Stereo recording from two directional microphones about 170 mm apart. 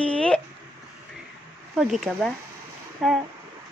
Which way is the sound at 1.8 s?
Centre (ahead or behind).